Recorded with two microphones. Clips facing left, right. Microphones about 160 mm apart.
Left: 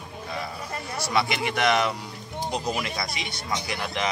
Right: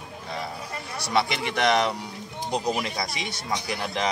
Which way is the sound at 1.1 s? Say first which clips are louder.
Right 1 dB; 30° right (ahead or behind).